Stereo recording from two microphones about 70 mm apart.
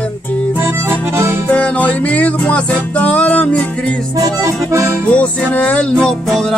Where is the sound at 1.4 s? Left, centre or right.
Left.